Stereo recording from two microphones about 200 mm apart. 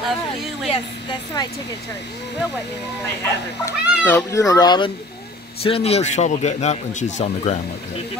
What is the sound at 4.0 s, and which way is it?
A man's voice, 10° left (ahead or behind).